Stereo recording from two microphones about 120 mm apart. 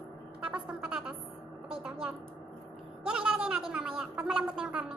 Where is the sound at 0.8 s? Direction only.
5° right (ahead or behind).